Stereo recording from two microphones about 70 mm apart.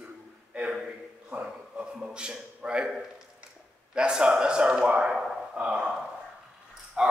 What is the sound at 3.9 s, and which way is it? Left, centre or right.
A man's voice, centre.